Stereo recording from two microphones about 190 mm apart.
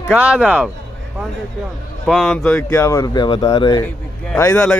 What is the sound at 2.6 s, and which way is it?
Speech, 15° left (ahead or behind).